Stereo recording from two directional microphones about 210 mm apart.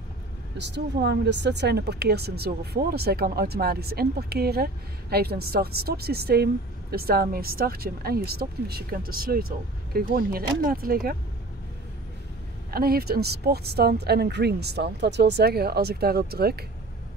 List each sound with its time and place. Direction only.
0.6 s a woman's voice: 55° right (ahead or behind)
12.7 s a woman's voice: 45° right (ahead or behind)